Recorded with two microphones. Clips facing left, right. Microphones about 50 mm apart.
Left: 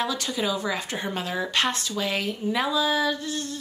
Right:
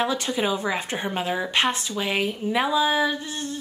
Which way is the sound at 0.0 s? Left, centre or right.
Right.